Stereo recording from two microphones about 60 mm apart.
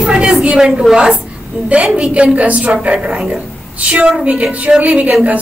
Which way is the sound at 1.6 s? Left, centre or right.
Right.